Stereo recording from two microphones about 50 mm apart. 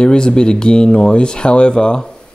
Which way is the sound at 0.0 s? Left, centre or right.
Centre.